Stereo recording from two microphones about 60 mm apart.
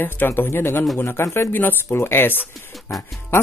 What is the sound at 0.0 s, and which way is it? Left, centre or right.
Speech, left.